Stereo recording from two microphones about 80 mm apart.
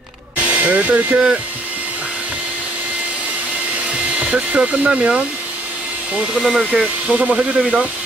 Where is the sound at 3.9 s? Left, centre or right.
Centre.